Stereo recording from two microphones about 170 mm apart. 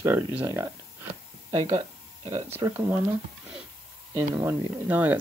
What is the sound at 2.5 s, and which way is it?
Speech, 15° right (ahead or behind).